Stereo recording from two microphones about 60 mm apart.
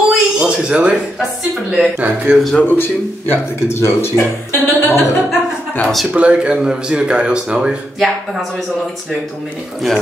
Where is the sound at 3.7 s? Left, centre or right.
Left.